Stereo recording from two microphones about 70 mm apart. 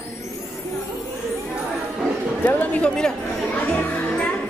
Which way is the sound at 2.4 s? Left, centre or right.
Left.